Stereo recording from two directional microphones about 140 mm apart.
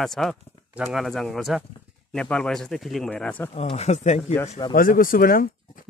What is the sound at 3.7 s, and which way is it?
Speech, 50° left (ahead or behind).